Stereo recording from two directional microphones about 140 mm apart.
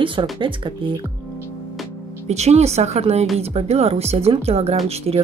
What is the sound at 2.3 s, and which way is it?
A woman's voice, 50° right (ahead or behind).